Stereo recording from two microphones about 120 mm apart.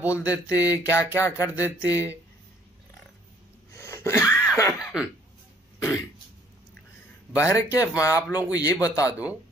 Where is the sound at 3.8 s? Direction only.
20° left (ahead or behind).